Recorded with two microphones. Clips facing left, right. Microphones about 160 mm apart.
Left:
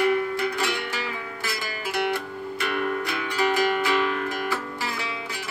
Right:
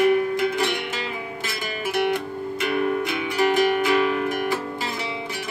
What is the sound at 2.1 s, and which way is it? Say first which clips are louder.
Music: right 3 dB; 20° right (ahead or behind).